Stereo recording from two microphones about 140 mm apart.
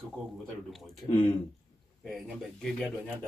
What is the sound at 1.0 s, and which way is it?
Speech, 20° left (ahead or behind).